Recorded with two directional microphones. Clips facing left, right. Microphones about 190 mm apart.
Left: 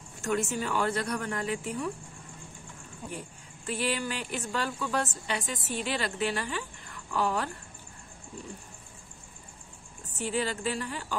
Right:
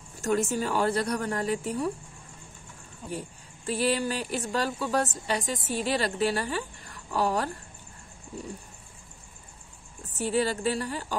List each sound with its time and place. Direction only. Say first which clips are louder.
0.2 s a woman's voice: right 3 dB; 40° right (ahead or behind)
3.6 s a woman's voice: right 5 dB; 35° right (ahead or behind)
10.1 s a woman's voice: right 4 dB; 40° right (ahead or behind)